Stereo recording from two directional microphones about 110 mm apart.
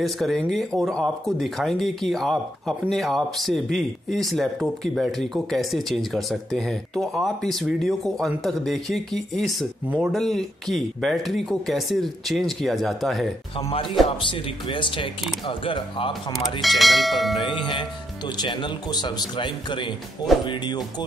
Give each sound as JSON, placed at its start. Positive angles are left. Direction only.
{"t": 0.0, "sound": "speech", "side_deg": 0}
{"t": 14.0, "sound": "speech", "side_deg": 50}
{"t": 16.6, "sound": "speech", "side_deg": 0}
{"t": 18.4, "sound": "speech", "side_deg": 45}